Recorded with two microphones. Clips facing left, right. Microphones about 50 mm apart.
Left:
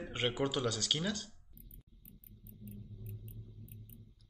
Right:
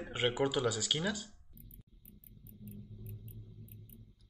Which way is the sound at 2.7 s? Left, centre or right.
Centre.